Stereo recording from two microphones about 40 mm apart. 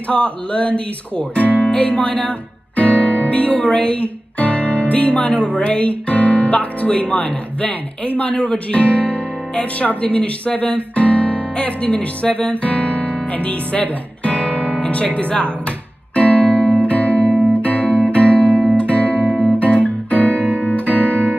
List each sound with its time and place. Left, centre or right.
0.1 s speech: left
1.7 s music: left
4.4 s speech: left
8.4 s speech: left
8.8 s music: left
9.6 s speech: left
16.2 s music: left
19.6 s guitar: left